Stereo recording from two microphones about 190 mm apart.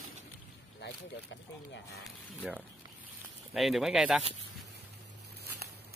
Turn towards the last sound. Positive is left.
turn(degrees=0)  # may be behind; listen again after turning